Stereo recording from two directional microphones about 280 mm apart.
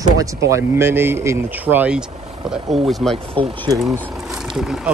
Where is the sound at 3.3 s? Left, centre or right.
Centre.